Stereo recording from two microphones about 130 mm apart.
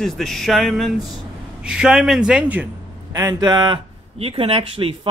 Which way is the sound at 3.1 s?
25° right (ahead or behind).